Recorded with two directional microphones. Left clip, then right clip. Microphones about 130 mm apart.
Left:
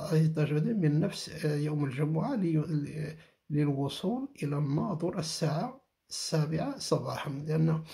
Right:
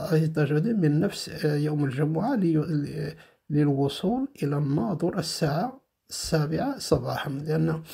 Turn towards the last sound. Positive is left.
turn(degrees=-35)  # may be behind; listen again after turning